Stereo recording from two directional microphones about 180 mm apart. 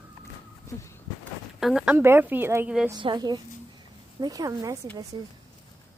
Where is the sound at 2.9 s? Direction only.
25° right (ahead or behind).